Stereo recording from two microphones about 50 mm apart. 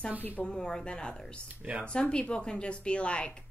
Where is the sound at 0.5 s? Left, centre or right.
Centre.